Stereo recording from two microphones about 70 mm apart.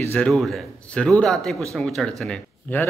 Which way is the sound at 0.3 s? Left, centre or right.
Centre.